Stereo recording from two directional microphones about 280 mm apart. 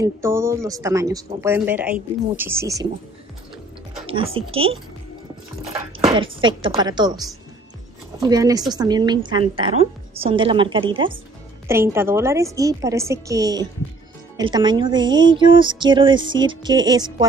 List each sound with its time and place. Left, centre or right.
0.0 s a woman's voice: centre
4.0 s a woman's voice: centre